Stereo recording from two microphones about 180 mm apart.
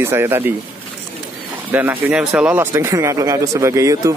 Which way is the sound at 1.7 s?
10° right (ahead or behind).